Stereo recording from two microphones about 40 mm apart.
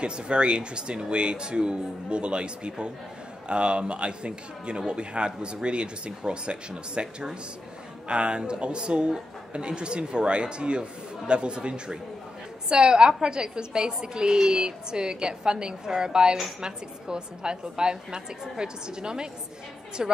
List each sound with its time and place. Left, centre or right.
0.0 s a man's voice: right